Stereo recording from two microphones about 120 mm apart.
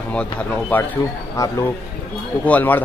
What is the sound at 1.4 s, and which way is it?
Speech, 25° left (ahead or behind).